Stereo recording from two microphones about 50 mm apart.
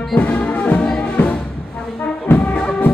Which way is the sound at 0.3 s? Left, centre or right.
Left.